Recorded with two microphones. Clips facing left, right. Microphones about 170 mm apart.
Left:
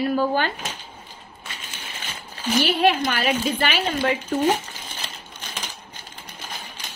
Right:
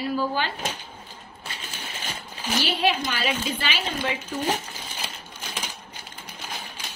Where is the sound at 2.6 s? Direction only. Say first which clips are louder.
Left 5 dB; 55° left (ahead or behind).